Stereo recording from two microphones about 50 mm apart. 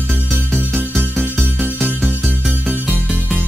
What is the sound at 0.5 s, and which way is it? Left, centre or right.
Music, left.